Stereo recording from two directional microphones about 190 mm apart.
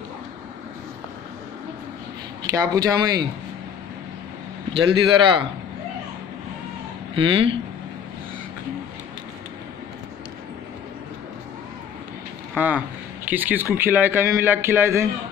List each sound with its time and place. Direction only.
2.5 s speech: 20° right (ahead or behind)
4.7 s speech: 25° right (ahead or behind)
7.2 s speech: 30° right (ahead or behind)
12.5 s a man's voice: 10° right (ahead or behind)